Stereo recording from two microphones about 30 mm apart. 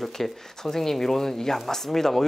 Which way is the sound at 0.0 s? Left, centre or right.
Centre.